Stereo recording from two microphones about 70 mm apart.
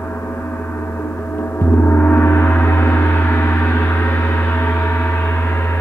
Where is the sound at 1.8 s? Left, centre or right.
Left.